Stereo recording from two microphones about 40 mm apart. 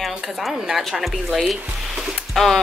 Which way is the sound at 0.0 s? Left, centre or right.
Centre.